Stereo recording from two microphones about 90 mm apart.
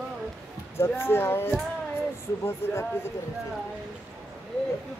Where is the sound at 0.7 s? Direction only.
25° left (ahead or behind).